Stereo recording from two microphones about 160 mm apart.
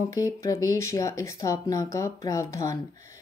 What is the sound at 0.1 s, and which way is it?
A woman's voice, 20° left (ahead or behind).